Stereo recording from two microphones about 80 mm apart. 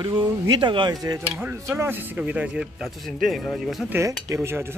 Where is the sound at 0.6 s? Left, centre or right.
Right.